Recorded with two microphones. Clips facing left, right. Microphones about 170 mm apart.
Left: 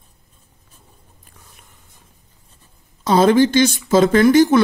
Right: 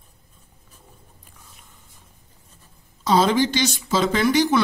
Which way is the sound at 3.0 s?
50° left (ahead or behind).